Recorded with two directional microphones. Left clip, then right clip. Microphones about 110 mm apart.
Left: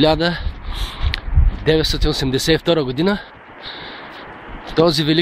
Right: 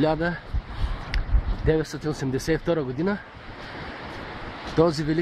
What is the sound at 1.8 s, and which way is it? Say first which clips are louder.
Speech: left 9 dB; 5° left (ahead or behind).